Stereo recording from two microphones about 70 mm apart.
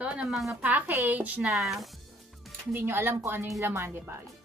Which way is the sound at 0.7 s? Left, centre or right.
Right.